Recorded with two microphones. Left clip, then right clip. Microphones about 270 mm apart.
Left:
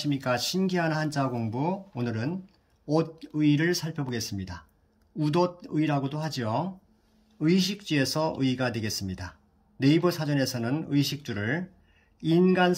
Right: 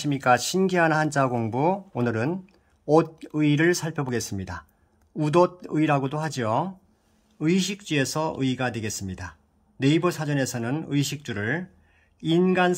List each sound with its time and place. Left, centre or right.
0.1 s speech: centre
6.1 s speech: centre